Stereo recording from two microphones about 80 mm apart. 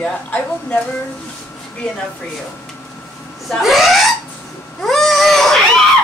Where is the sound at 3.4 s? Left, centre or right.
Centre.